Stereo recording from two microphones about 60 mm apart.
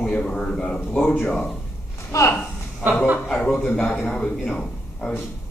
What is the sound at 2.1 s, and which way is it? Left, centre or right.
Speech, left.